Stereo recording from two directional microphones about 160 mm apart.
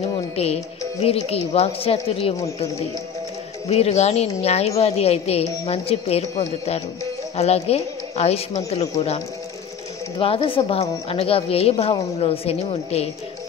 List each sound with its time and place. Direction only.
0.4 s a woman's voice: 40° left (ahead or behind)
2.3 s a woman's voice: 20° left (ahead or behind)
3.6 s a woman's voice: 40° left (ahead or behind)
7.3 s a woman's voice: 40° left (ahead or behind)
10.1 s a woman's voice: 35° left (ahead or behind)